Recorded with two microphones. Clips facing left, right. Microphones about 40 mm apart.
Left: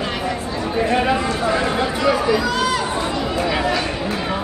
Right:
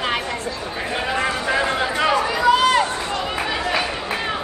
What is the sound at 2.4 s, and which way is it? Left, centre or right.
Run, right.